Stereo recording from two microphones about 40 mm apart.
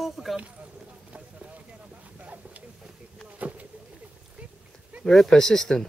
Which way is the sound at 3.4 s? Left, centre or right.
Right.